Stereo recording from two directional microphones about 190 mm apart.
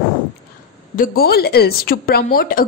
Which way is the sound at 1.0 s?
55° left (ahead or behind).